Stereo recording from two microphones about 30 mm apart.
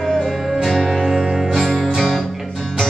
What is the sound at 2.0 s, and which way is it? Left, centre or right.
Music, centre.